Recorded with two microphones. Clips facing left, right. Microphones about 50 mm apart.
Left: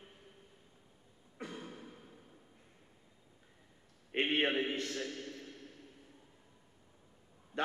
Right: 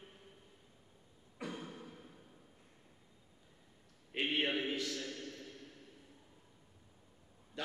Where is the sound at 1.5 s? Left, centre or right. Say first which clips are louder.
Even; centre.